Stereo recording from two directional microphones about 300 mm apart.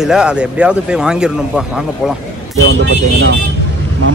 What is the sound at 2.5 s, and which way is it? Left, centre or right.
Speech, right.